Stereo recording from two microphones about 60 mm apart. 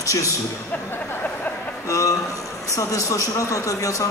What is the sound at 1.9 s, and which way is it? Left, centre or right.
A man's voice, left.